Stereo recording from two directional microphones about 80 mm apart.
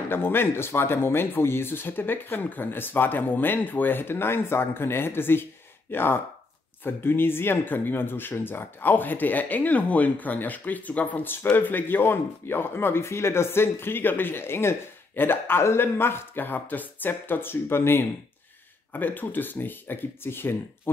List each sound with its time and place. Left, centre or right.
0.1 s speech: left